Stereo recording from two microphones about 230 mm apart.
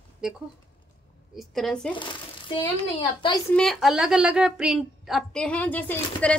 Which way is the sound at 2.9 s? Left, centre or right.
Left.